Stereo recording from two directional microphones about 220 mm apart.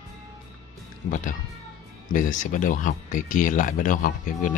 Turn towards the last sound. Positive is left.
turn(degrees=35)  # may be behind; listen again after turning